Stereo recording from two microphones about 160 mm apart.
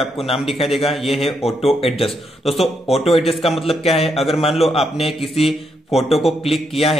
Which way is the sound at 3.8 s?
40° left (ahead or behind).